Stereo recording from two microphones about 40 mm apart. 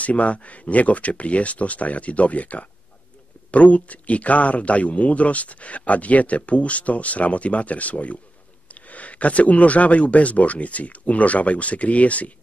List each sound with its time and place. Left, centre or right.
0.0 s speech: left